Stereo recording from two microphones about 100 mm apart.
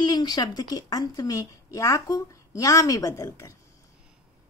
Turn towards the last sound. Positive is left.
turn(degrees=30)  # may be behind; listen again after turning